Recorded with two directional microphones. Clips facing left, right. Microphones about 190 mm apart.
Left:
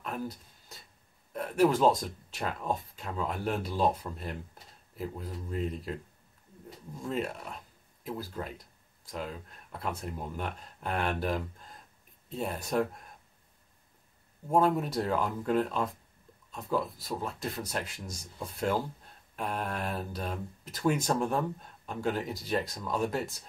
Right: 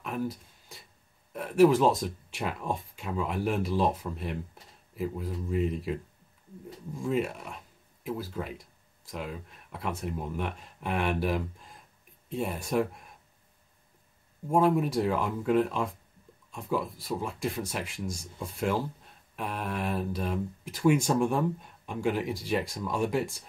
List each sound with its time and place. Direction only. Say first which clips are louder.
0.0 s a sound: right 4 dB; 5° right (ahead or behind)
1.3 s speech: right 4 dB; 5° right (ahead or behind)
7.0 s speech: right 4 dB; 10° right (ahead or behind)
14.5 s speech: right 2 dB; 10° right (ahead or behind)